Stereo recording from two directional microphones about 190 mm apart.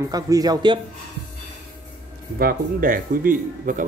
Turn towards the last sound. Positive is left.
turn(degrees=-45)  # may be behind; listen again after turning